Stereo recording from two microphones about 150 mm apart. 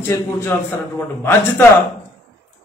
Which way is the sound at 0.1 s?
15° left (ahead or behind).